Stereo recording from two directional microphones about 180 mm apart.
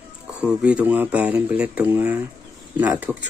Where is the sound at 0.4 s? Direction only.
5° right (ahead or behind).